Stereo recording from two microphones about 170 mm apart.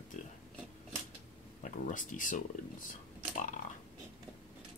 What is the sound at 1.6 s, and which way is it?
Speech, 50° left (ahead or behind).